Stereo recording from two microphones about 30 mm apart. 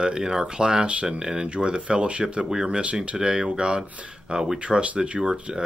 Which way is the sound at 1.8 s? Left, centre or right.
Right.